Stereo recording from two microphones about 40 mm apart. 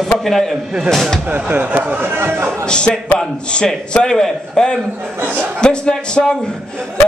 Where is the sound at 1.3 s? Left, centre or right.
Right.